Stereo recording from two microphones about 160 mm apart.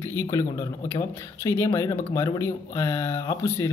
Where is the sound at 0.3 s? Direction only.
20° left (ahead or behind).